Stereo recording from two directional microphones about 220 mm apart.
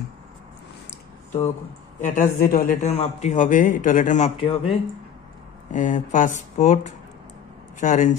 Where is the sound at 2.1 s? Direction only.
40° left (ahead or behind).